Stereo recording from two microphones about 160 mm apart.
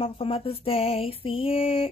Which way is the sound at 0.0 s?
35° left (ahead or behind).